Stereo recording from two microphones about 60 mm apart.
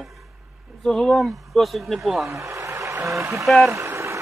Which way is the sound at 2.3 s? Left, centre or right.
Right.